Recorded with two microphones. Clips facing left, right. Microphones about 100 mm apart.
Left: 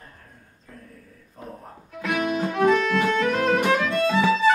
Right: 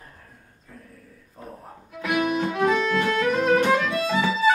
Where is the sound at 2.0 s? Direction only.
Centre (ahead or behind).